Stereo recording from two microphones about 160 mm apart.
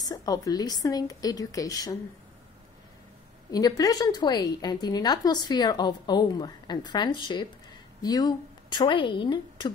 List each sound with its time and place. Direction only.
0.0 s a woman's voice: 25° left (ahead or behind)
3.5 s a woman's voice: 25° left (ahead or behind)